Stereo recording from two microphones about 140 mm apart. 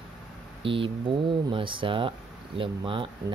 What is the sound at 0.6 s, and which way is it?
Speech, 40° right (ahead or behind).